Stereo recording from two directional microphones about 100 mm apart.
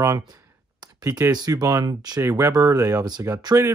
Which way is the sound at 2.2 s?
30° right (ahead or behind).